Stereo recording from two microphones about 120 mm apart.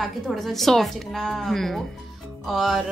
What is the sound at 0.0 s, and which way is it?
Speech, centre (ahead or behind).